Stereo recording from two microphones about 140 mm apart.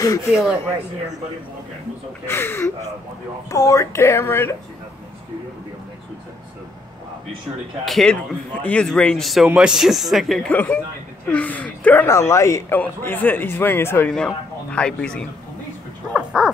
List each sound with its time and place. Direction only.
0.3 s speech: 5° right (ahead or behind)
2.2 s speech: 15° left (ahead or behind)
7.8 s speech: 5° left (ahead or behind)
10.5 s speech: 10° left (ahead or behind)
14.1 s speech: 5° left (ahead or behind)
16.1 s speech: 5° right (ahead or behind)